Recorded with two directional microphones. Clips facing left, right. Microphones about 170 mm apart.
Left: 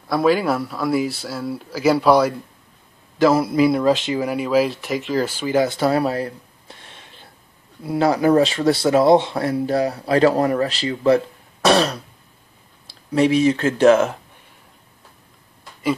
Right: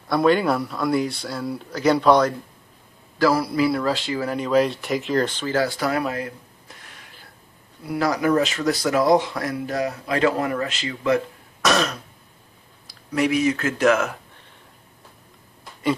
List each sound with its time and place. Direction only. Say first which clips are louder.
0.1 s speech: left 1 dB; centre (ahead or behind)
3.2 s speech: left 4 dB; 20° left (ahead or behind)